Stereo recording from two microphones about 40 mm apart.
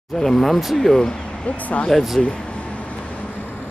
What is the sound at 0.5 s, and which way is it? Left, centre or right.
Speech, centre.